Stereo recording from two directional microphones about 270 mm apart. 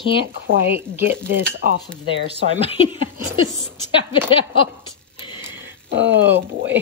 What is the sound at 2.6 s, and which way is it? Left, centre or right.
Speech, centre.